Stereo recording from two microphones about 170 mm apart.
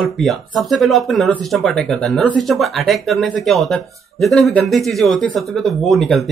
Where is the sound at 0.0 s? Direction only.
Centre (ahead or behind).